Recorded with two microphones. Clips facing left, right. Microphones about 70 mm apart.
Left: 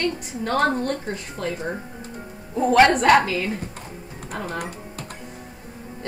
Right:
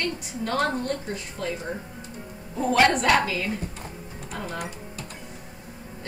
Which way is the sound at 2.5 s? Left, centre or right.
Left.